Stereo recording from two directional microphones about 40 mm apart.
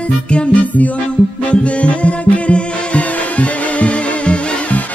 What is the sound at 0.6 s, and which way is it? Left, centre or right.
Music, left.